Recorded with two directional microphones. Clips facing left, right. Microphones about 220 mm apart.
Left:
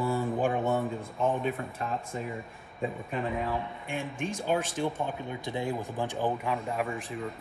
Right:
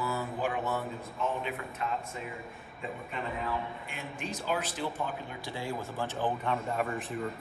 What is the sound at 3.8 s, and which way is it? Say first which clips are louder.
Speech: left 6 dB; 50° left (ahead or behind).